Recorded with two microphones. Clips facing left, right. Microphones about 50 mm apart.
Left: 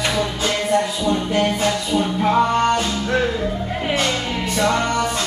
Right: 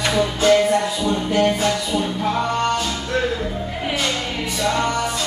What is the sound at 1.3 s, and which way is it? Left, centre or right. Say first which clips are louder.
Music: right 1 dB; left.